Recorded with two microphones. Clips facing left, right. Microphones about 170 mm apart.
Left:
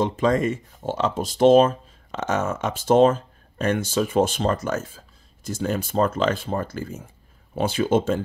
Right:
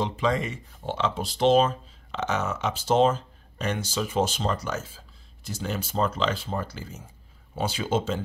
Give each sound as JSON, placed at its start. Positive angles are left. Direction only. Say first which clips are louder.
{"t": 0.0, "sound": "speech", "louder": "left 5 dB", "side_deg": 45}